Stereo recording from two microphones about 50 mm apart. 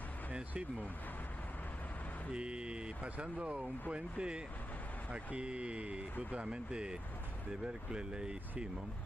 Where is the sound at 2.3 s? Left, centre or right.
Centre.